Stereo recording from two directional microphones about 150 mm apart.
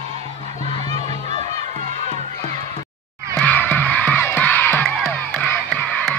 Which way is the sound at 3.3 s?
10° left (ahead or behind).